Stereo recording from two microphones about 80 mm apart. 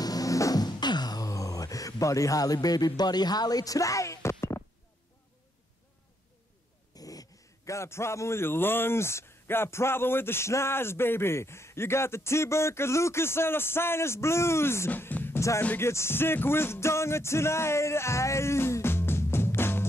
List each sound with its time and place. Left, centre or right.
0.0 s a sound: left
7.0 s a man's voice: left
14.9 s music: left